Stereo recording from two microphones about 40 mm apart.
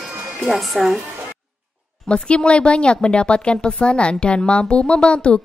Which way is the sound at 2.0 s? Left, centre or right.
Left.